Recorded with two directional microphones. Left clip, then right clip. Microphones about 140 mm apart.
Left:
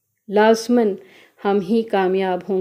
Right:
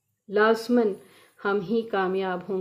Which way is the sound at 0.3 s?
35° left (ahead or behind).